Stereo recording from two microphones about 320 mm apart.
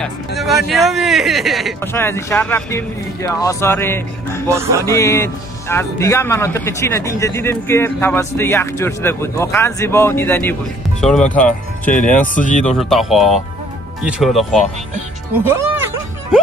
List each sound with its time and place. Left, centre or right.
0.7 s speech: centre
4.5 s music: centre
4.8 s speech: centre
11.9 s speech: left
12.6 s speech: centre
15.5 s music: centre